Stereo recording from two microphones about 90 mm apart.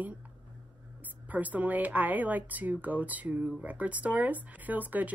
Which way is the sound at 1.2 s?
15° right (ahead or behind).